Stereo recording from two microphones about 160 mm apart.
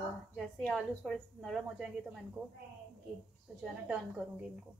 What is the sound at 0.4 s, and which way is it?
Speech, centre (ahead or behind).